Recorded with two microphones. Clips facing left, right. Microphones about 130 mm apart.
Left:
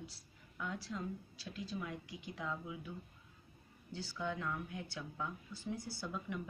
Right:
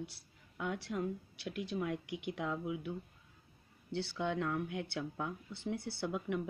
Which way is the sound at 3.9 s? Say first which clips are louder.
Right 5 dB; 70° right (ahead or behind).